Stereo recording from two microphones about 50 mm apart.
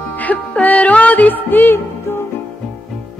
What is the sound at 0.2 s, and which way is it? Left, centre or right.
Music, left.